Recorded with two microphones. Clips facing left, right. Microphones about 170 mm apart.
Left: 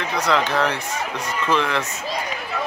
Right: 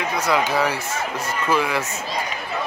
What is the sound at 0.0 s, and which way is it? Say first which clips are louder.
Speech: even; 10° right (ahead or behind).